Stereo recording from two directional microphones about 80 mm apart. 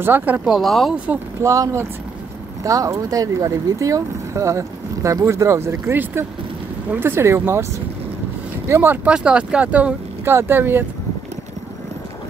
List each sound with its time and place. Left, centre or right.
0.0 s speech: right
0.5 s speech: centre
0.9 s speech: centre
1.4 s speech: right
8.6 s speech: right
9.1 s speech: centre
10.2 s speech: right